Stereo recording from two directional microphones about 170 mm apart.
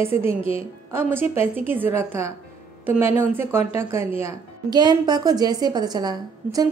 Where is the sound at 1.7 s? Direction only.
15° right (ahead or behind).